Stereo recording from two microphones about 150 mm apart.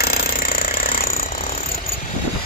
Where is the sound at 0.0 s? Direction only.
90° left; by 1.6 s 75° left (ahead or behind).